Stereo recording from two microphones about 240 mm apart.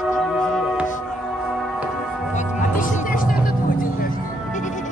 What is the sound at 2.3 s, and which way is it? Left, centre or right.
Music, left.